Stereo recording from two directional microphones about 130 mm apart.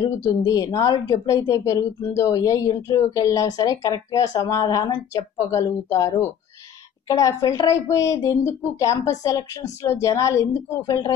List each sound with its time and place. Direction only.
0.3 s a woman's voice: 30° left (ahead or behind)